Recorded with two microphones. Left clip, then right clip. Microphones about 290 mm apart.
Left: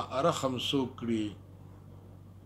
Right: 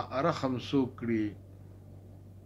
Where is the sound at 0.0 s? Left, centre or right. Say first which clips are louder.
Left 1 dB; left.